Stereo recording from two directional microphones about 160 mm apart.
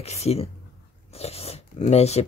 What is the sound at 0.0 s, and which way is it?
Speech, 40° left (ahead or behind).